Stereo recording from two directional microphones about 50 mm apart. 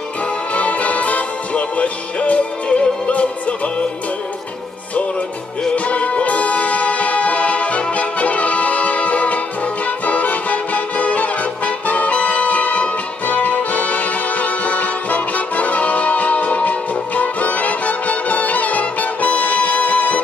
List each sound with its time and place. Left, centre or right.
0.6 s music: left
5.9 s music: left